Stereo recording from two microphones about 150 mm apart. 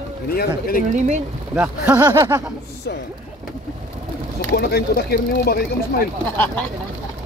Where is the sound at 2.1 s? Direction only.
25° right (ahead or behind).